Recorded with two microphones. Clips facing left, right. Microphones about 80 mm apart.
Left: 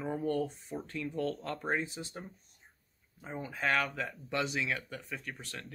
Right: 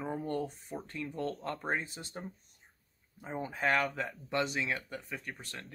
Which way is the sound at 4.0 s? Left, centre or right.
Right.